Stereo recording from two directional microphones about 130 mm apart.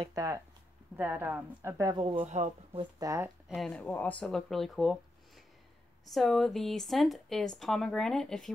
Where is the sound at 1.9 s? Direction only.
40° right (ahead or behind).